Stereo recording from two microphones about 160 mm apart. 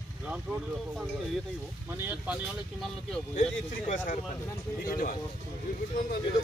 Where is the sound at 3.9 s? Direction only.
50° left (ahead or behind).